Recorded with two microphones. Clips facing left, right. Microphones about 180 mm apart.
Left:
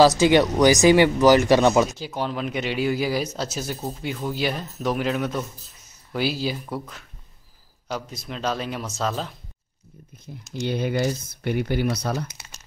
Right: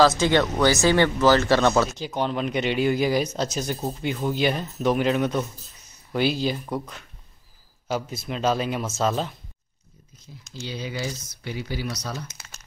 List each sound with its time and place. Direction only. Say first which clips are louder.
0.0 s speech: left 3 dB; 15° left (ahead or behind); by 9.3 s 5° right (ahead or behind)
10.1 s speech: left 7 dB; 55° left (ahead or behind)